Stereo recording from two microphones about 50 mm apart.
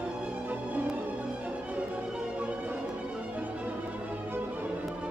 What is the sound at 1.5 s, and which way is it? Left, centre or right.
Music, right.